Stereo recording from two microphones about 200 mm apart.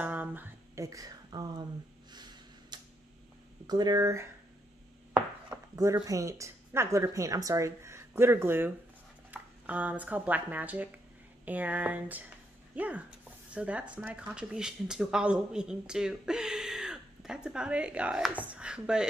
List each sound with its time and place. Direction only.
0.0 s a sound: 10° right (ahead or behind)
3.6 s speech: 20° right (ahead or behind)
5.1 s chopping: 15° right (ahead or behind)
6.0 s speech: 15° right (ahead or behind)